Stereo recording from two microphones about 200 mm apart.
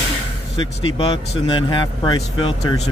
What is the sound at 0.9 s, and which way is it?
Speech, 25° left (ahead or behind).